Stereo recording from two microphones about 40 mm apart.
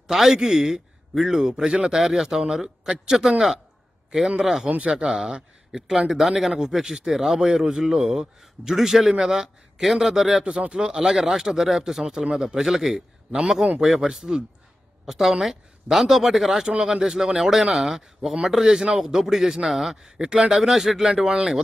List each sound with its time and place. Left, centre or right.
0.1 s a man's voice: centre
4.6 s speech: right
4.9 s a man's voice: centre
11.0 s a man's voice: centre
12.9 s a man's voice: right
15.0 s a woman's voice: centre
16.6 s a man's voice: centre
20.1 s speech: centre
20.6 s a man's voice: centre